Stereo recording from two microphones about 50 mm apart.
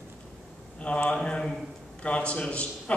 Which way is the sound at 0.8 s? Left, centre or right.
Left.